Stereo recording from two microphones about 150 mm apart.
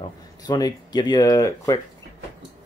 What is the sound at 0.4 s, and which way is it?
Speech, 25° left (ahead or behind).